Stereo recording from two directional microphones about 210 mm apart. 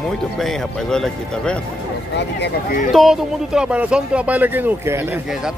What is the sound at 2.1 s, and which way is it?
Speech, 55° left (ahead or behind).